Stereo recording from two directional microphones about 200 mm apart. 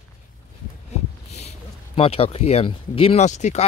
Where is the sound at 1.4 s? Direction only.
30° left (ahead or behind).